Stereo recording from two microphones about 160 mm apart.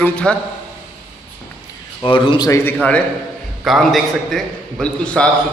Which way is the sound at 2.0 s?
30° left (ahead or behind).